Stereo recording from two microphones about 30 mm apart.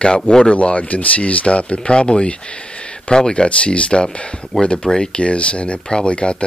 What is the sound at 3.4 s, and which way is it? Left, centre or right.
Speech, left.